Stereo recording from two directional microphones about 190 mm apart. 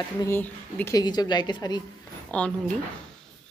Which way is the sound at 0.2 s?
10° left (ahead or behind).